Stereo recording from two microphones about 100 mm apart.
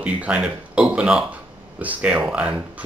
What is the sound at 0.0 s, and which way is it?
Speech, 10° right (ahead or behind).